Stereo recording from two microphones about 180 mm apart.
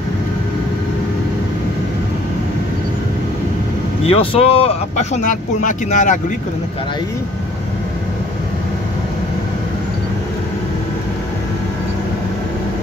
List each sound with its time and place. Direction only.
4.0 s speech: 30° left (ahead or behind)